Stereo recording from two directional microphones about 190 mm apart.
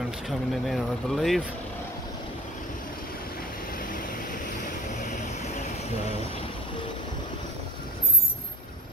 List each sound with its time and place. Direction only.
0.3 s speech: centre (ahead or behind)
3.7 s vehicle: 45° left (ahead or behind)